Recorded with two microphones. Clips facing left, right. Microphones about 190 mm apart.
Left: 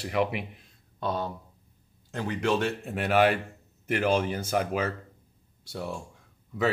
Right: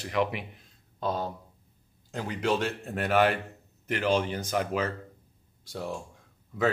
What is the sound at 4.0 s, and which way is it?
Speech, 10° left (ahead or behind).